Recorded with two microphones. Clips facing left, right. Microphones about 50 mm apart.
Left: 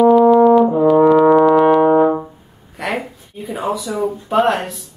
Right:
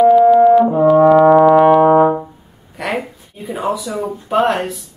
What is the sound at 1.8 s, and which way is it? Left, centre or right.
Brass instrument, centre.